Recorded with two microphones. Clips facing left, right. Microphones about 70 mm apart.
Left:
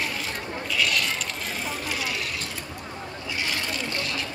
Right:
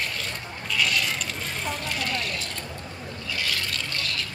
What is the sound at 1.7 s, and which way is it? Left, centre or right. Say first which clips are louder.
Vehicle: right 2 dB; centre.